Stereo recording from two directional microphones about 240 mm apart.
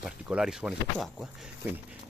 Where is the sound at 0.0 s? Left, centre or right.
Centre.